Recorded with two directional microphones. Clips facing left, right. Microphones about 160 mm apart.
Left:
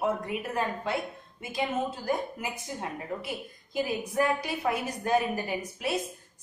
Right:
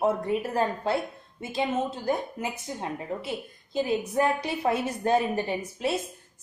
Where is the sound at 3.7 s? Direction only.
25° right (ahead or behind).